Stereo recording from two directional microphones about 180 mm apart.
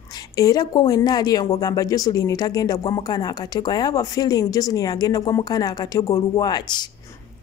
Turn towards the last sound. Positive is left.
turn(degrees=25)  # may be behind; listen again after turning